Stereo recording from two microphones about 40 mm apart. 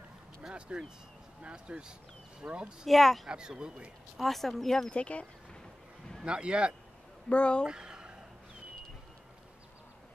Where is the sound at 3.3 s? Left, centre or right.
Right.